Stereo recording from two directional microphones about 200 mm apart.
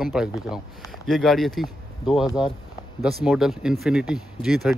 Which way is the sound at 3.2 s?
5° right (ahead or behind).